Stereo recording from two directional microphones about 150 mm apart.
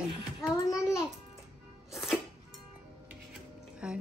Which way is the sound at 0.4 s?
20° left (ahead or behind).